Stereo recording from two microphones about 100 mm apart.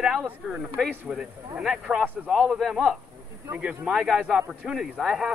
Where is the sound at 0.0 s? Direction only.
5° right (ahead or behind).